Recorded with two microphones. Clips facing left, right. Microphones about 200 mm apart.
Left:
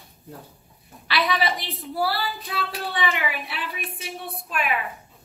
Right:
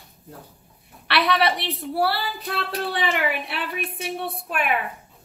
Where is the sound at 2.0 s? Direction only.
65° right (ahead or behind).